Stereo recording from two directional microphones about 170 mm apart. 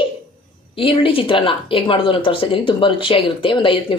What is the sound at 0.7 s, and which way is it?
A woman's voice, 30° left (ahead or behind).